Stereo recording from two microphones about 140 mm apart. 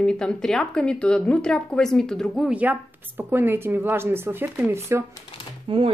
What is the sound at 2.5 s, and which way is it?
Speech, 10° right (ahead or behind).